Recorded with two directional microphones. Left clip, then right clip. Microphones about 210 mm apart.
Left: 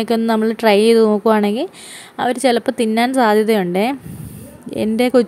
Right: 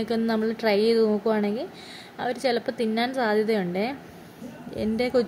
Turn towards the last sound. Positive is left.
turn(degrees=30)  # may be behind; listen again after turning